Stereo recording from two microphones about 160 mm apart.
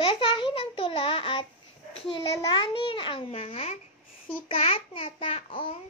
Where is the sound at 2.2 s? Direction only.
25° left (ahead or behind).